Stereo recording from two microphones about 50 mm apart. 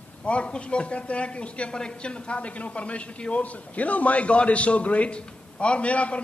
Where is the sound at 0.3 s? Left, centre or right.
Left.